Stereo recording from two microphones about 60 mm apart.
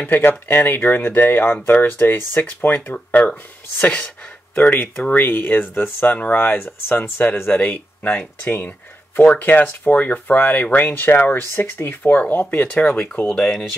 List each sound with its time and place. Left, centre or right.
0.0 s speech: left; by 13.7 s centre